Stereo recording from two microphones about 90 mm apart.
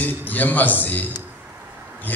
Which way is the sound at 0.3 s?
20° left (ahead or behind).